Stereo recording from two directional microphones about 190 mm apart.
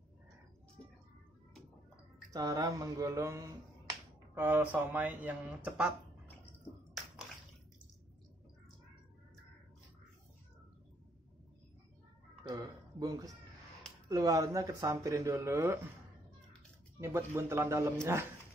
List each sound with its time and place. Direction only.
2.3 s speech: 20° right (ahead or behind)
12.4 s a sound: 20° right (ahead or behind)
14.0 s speech: 20° right (ahead or behind)
17.0 s speech: 15° right (ahead or behind)